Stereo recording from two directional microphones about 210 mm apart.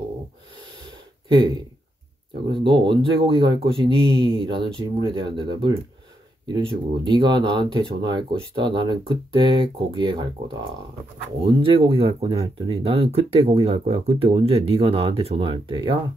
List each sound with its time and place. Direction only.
1.3 s speech: 20° right (ahead or behind)